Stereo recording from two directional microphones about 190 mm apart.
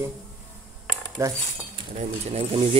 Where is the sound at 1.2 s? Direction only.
15° right (ahead or behind).